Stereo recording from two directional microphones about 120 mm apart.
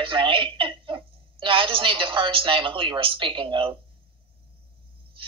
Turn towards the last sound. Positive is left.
turn(degrees=-45)  # may be behind; listen again after turning